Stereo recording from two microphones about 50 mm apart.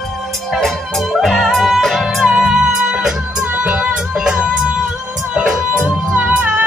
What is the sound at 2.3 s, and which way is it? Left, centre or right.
Music, centre.